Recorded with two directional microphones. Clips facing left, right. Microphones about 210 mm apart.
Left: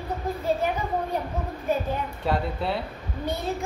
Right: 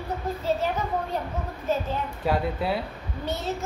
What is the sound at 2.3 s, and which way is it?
Speech, 5° right (ahead or behind).